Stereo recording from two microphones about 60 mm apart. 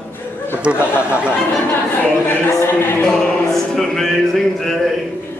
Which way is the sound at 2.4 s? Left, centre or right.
Left.